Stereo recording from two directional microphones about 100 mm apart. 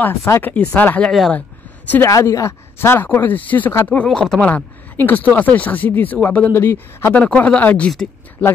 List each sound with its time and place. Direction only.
0.0 s speech: 30° left (ahead or behind)
0.5 s speech: 15° left (ahead or behind)
2.0 s speech: 30° left (ahead or behind)
7.2 s speech: 10° left (ahead or behind)